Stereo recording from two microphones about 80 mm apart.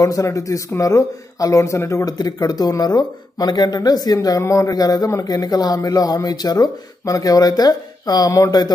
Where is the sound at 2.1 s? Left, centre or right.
Left.